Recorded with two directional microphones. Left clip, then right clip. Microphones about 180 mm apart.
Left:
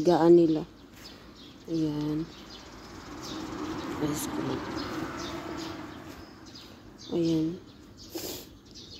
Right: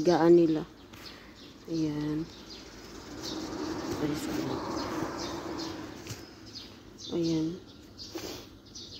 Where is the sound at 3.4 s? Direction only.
35° left (ahead or behind).